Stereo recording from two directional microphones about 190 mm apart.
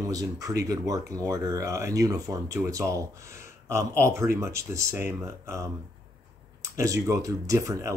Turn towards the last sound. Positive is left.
turn(degrees=-15)  # may be behind; listen again after turning